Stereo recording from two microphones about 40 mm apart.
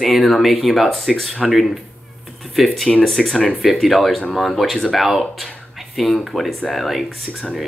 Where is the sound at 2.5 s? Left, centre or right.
Centre.